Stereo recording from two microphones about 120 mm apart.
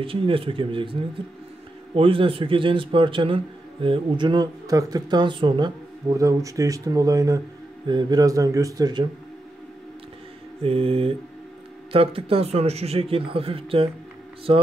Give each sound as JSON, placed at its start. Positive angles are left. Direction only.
{"t": 0.0, "sound": "speech", "side_deg": -50}
{"t": 2.0, "sound": "speech", "side_deg": -50}
{"t": 10.6, "sound": "speech", "side_deg": -55}